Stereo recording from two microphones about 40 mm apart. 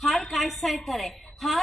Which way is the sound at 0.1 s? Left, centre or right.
Centre.